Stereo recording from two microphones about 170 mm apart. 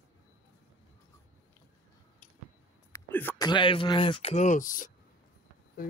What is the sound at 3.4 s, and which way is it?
Speech, 25° left (ahead or behind).